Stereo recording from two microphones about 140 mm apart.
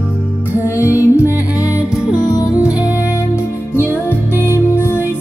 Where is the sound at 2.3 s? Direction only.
25° left (ahead or behind).